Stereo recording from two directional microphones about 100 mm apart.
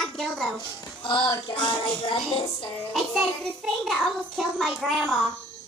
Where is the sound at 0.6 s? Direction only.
55° left (ahead or behind).